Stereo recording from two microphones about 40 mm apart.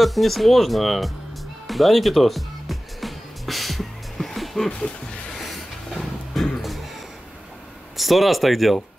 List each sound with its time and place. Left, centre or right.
0.0 s speech: centre
1.7 s music: centre
4.6 s speech: left
5.4 s a sound: centre
8.0 s speech: centre